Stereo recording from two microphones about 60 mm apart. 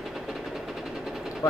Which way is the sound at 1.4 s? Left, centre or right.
Left.